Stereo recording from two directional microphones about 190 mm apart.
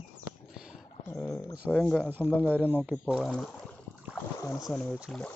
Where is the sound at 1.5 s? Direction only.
5° right (ahead or behind).